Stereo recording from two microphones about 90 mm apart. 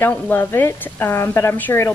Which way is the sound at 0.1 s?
20° left (ahead or behind).